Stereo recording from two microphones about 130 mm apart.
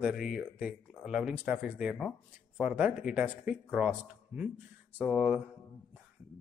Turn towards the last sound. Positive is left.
turn(degrees=-10)  # may be behind; listen again after turning